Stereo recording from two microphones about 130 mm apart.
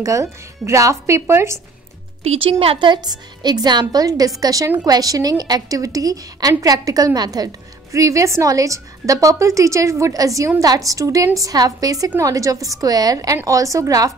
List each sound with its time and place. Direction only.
0.0 s a woman's voice: 25° right (ahead or behind)
2.2 s a woman's voice: 45° right (ahead or behind); by 14.1 s 25° right (ahead or behind)